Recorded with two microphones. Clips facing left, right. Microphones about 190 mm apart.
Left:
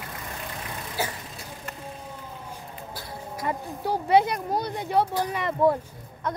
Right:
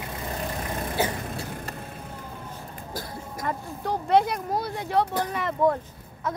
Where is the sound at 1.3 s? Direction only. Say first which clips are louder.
Right 7 dB; 55° right (ahead or behind).